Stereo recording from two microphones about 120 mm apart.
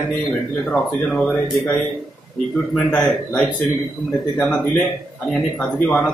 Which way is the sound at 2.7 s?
10° left (ahead or behind).